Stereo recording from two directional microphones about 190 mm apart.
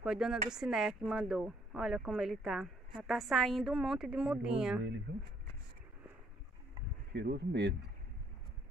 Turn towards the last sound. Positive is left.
turn(degrees=-65)  # may be behind; listen again after turning